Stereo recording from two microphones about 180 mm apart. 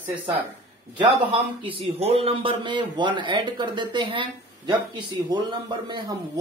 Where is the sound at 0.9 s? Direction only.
25° right (ahead or behind).